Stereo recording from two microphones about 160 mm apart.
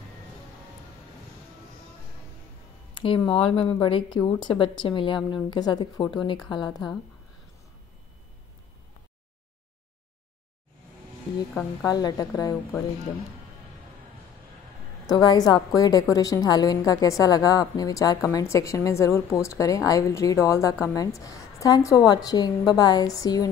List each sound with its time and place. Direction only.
3.3 s a woman's voice: 35° left (ahead or behind)
11.8 s a woman's voice: 25° left (ahead or behind)
15.0 s a woman's voice: 25° left (ahead or behind)